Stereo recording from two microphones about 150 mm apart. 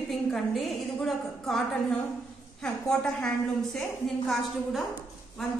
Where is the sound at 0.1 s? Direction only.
Centre (ahead or behind).